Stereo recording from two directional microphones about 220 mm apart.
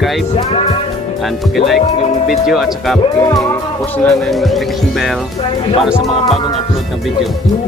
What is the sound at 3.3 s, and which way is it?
Music, 15° left (ahead or behind).